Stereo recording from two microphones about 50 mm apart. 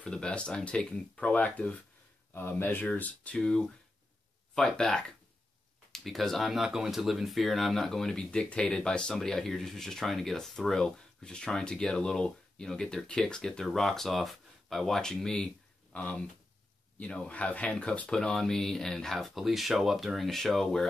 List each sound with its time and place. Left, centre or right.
0.1 s speech: left
2.3 s speech: left
3.3 s speech: centre
6.5 s speech: centre
15.9 s speech: left
17.3 s speech: left
18.1 s speech: centre